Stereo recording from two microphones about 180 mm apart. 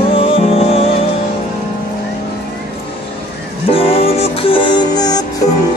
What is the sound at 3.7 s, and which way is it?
Music, 30° left (ahead or behind).